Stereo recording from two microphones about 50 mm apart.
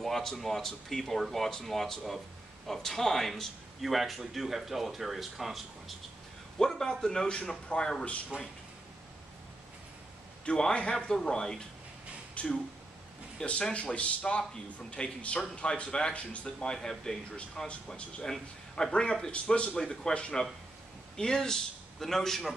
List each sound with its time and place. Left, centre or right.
0.0 s speech: centre
6.6 s speech: centre
8.3 s speech: right
10.4 s speech: left
12.4 s speech: left; by 22.5 s centre